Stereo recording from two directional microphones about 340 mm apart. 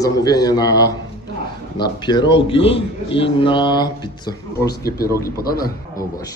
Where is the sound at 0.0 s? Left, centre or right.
Centre.